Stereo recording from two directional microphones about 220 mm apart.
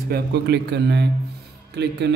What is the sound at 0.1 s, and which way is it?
A man's voice, 50° right (ahead or behind).